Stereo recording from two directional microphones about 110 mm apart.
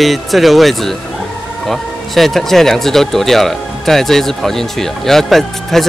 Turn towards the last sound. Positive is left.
turn(degrees=5)  # may be behind; listen again after turning